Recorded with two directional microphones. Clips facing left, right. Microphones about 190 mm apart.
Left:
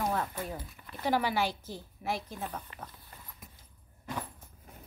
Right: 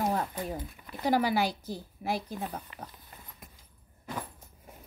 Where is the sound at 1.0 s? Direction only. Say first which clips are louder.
Right 3 dB; 40° right (ahead or behind).